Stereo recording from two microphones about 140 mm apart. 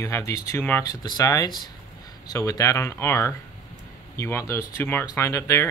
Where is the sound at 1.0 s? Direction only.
25° left (ahead or behind).